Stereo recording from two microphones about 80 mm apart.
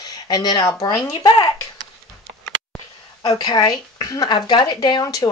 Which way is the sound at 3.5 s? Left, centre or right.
Left.